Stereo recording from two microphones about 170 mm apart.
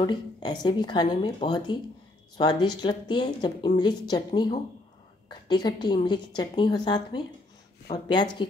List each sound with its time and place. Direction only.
0.0 s a woman's voice: 25° left (ahead or behind)